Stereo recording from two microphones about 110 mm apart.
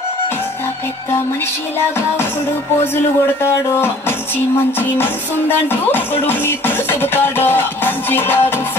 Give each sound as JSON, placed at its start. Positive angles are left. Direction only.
{"t": 5.7, "sound": "music", "side_deg": 20}